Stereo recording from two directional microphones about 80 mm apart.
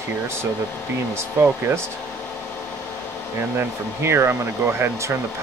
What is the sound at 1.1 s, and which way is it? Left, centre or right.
Speech, right.